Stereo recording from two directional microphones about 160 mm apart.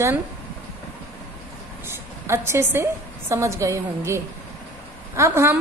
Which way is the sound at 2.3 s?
15° right (ahead or behind).